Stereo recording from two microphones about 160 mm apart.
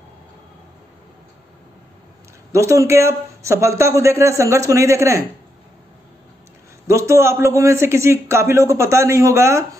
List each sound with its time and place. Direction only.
2.5 s speech: 20° right (ahead or behind)
6.9 s a man's voice: 20° right (ahead or behind)